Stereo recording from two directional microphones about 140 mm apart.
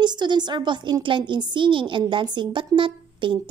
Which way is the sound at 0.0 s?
30° right (ahead or behind).